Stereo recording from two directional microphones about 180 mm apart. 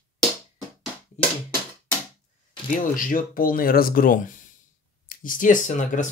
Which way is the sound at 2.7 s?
50° left (ahead or behind).